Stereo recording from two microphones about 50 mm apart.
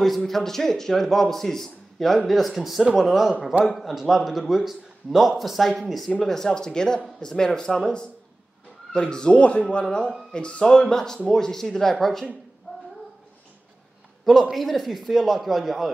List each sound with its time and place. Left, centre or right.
0.0 s a man's voice: centre
14.2 s a man's voice: centre